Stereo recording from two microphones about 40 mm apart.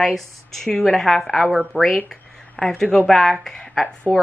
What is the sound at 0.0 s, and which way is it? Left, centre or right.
A woman's voice, centre.